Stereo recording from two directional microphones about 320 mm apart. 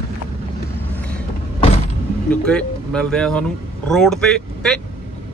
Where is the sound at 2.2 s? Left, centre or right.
Centre.